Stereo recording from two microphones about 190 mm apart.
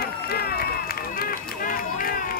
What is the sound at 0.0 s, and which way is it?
Run, 55° left (ahead or behind).